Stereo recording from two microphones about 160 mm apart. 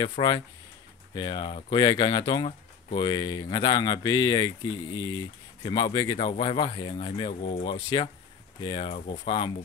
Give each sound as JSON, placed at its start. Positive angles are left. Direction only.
{"t": 0.0, "sound": "speech", "side_deg": 30}